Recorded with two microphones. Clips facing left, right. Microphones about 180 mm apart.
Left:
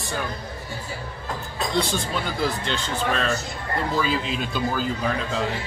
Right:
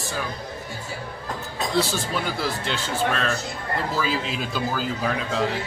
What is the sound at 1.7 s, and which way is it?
Speech, 5° right (ahead or behind).